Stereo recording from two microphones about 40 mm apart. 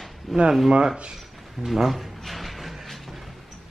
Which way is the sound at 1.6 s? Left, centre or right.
Centre.